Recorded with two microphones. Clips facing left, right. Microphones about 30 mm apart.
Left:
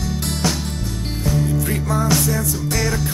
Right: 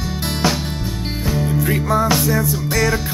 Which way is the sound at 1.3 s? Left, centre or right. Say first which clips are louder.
Right 1 dB; right.